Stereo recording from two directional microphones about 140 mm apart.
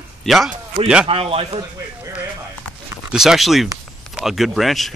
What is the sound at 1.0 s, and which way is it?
Speech, 40° right (ahead or behind).